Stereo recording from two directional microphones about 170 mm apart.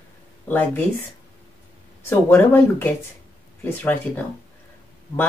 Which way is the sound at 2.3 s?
15° left (ahead or behind).